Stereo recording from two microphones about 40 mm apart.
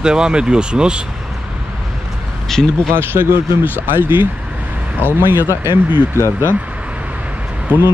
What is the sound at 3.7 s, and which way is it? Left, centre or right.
Speech, right.